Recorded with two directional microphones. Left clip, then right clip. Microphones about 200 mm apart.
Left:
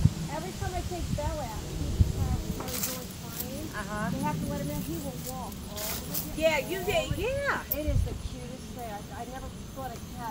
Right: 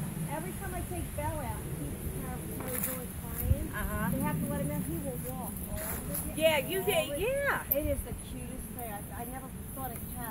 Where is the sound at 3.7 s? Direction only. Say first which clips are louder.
Left 2 dB; 35° right (ahead or behind).